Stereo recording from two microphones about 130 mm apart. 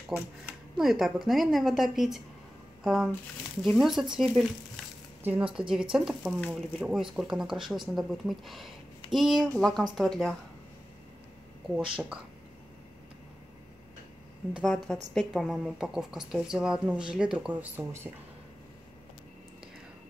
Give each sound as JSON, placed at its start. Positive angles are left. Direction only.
{"t": 0.1, "sound": "speech", "side_deg": -15}
{"t": 0.7, "sound": "speech", "side_deg": 0}
{"t": 5.2, "sound": "speech", "side_deg": -10}
{"t": 14.5, "sound": "speech", "side_deg": 0}